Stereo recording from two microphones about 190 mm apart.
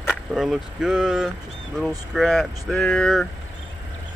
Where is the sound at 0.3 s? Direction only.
Centre (ahead or behind).